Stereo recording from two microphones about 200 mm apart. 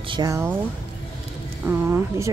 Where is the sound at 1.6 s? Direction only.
10° right (ahead or behind).